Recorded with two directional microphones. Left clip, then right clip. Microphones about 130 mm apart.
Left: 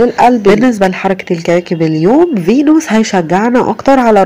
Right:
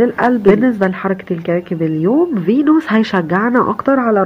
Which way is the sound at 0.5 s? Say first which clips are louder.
Left 4 dB; 40° left (ahead or behind).